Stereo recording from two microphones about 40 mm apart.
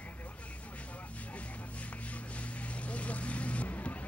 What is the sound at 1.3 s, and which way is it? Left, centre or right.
Vehicle, left.